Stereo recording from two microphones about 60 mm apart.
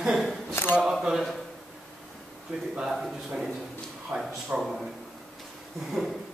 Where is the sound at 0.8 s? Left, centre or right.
Centre.